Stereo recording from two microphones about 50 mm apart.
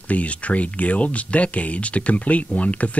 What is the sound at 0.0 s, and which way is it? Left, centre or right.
Speech, left.